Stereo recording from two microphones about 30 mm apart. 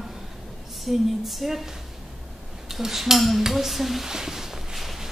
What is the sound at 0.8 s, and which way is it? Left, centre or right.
Speech, centre.